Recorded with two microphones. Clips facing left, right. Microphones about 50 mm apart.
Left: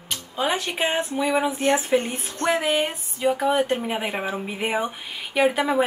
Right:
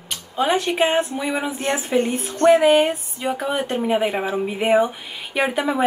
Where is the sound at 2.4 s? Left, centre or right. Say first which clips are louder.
Right 8 dB; right.